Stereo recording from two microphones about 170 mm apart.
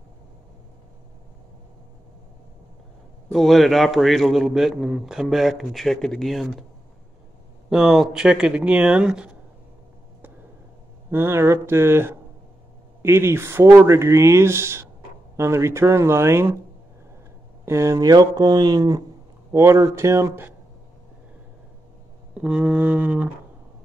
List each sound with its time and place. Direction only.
3.3 s a man's voice: centre (ahead or behind)
7.7 s a man's voice: 5° right (ahead or behind)
11.1 s speech: 15° right (ahead or behind)
17.6 s speech: 15° right (ahead or behind)
22.3 s speech: 5° right (ahead or behind)